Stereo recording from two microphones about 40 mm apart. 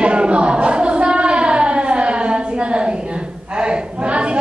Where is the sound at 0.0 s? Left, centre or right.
Right.